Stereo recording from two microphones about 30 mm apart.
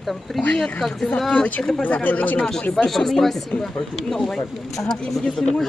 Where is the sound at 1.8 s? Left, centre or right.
Left.